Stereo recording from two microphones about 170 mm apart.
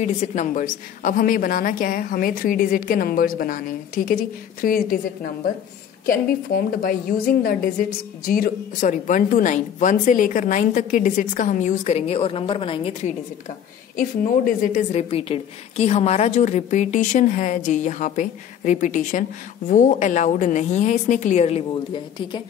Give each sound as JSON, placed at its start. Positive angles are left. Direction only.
{"t": 0.0, "sound": "a woman's voice", "side_deg": 45}
{"t": 13.9, "sound": "a woman's voice", "side_deg": 55}
{"t": 15.0, "sound": "a woman's voice", "side_deg": 35}